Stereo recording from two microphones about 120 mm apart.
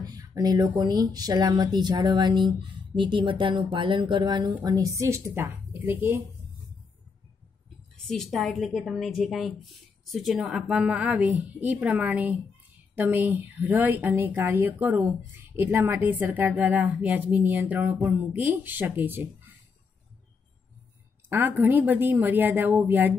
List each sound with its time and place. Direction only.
0.0 s speech: 30° right (ahead or behind)
8.1 s a woman's voice: centre (ahead or behind); by 19.2 s 15° right (ahead or behind)
21.3 s speech: 15° right (ahead or behind)